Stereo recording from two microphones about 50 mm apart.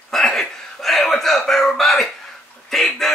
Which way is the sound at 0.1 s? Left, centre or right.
Centre.